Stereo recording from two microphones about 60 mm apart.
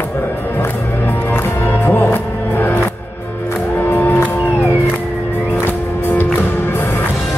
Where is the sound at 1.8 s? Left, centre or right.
Left.